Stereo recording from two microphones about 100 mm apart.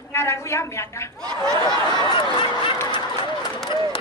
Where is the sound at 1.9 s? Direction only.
45° left (ahead or behind).